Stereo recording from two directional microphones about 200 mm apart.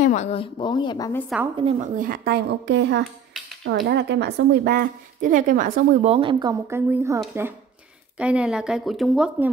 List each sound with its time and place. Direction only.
0.0 s a woman's voice: 35° left (ahead or behind); by 1.2 s 20° left (ahead or behind)
1.6 s speech: 30° right (ahead or behind)
2.0 s a woman's voice: 50° right (ahead or behind)
6.1 s speech: 25° right (ahead or behind)
6.7 s speech: 10° right (ahead or behind)
8.2 s speech: 5° right (ahead or behind)